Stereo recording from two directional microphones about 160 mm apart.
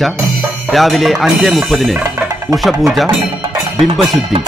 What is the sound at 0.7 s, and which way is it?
Speech, centre (ahead or behind).